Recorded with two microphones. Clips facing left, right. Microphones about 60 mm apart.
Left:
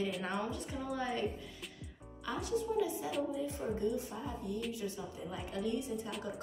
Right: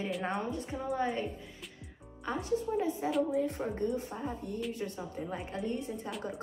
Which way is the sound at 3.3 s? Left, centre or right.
Right.